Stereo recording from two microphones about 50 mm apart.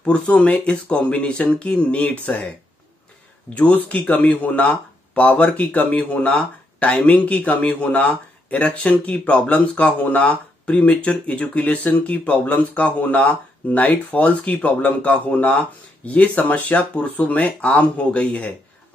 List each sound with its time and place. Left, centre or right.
0.0 s speech: left
3.5 s speech: left